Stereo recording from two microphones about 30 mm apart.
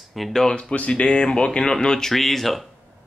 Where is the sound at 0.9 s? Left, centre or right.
Left; by 2.1 s centre.